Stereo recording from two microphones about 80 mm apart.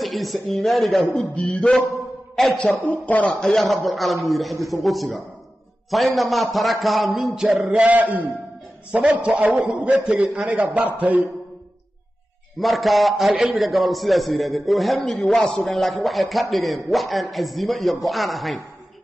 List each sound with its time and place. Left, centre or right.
0.0 s a man's voice: centre
1.3 s a sound: centre
2.3 s a man's voice: centre
2.8 s a man's voice: centre
7.6 s a man's voice: centre
12.5 s a man's voice: centre